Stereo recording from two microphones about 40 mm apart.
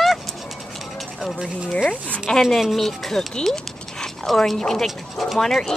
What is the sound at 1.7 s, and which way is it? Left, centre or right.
Speech, left.